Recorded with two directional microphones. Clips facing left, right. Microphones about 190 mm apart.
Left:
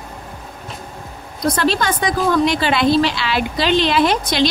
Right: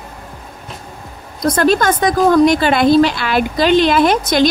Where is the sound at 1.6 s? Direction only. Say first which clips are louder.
Right 7 dB; 45° right (ahead or behind).